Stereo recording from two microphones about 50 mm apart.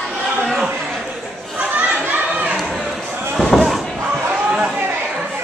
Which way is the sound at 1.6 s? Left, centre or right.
Right.